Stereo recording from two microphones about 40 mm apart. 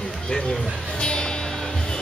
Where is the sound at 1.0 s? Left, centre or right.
Left.